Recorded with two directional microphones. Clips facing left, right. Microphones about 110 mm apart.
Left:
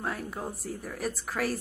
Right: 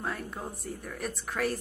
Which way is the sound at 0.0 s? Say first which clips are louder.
Left 2 dB; centre (ahead or behind).